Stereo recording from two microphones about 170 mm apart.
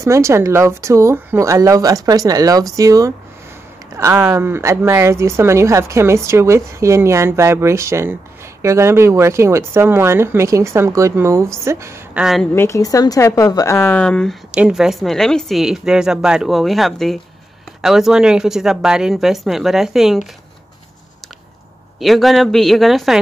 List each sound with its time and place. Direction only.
0.0 s a woman's voice: 15° right (ahead or behind)
12.2 s a woman's voice: centre (ahead or behind)
12.5 s a woman's voice: 15° left (ahead or behind); by 20.2 s centre (ahead or behind)
22.0 s a woman's voice: centre (ahead or behind)